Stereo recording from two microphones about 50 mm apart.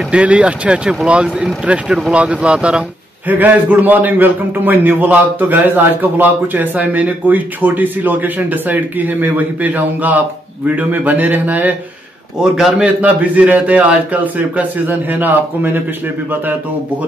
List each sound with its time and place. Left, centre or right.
0.1 s speech: right
3.3 s a man's voice: right
12.4 s a man's voice: centre
12.8 s a man's voice: right